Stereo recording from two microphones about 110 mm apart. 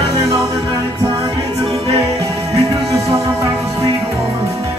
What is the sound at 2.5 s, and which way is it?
Music, 30° right (ahead or behind).